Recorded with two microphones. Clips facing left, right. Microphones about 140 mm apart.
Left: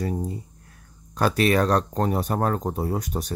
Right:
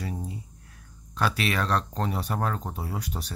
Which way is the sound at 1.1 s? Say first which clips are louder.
Left 7 dB; 45° left (ahead or behind).